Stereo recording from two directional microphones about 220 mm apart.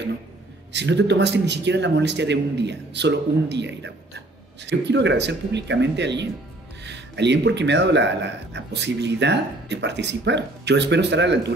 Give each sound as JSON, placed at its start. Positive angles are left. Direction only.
{"t": 0.7, "sound": "a man's voice", "side_deg": -55}